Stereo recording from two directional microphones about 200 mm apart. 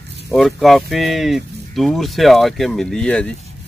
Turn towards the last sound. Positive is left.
turn(degrees=5)  # may be behind; listen again after turning